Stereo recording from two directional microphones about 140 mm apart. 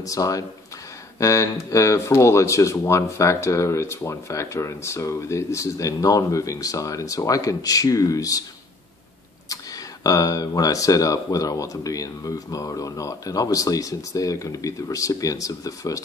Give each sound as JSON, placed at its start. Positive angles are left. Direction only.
{"t": 0.0, "sound": "speech", "side_deg": 25}
{"t": 10.0, "sound": "speech", "side_deg": 25}